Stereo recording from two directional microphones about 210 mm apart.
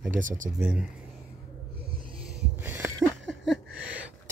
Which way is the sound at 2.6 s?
10° right (ahead or behind).